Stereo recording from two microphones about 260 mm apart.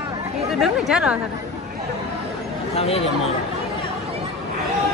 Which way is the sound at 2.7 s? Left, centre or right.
Left.